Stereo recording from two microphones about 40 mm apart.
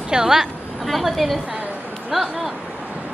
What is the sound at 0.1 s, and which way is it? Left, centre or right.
Speech, centre.